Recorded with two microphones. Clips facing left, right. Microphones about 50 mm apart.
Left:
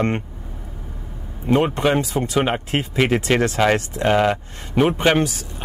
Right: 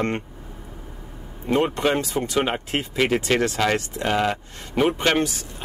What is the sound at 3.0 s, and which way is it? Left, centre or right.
Speech, centre.